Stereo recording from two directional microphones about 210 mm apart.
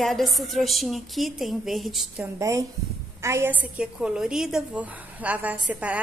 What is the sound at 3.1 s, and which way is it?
A woman's voice, 15° right (ahead or behind).